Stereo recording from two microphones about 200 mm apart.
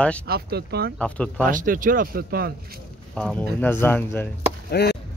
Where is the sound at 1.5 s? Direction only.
40° right (ahead or behind).